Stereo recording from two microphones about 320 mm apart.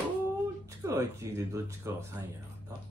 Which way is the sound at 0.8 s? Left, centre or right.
Centre.